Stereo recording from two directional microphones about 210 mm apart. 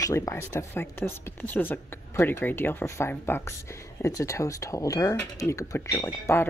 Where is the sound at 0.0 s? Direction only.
15° left (ahead or behind).